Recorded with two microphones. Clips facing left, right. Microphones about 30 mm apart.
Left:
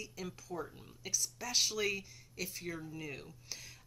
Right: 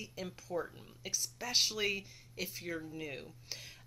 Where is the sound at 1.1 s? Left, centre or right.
Right.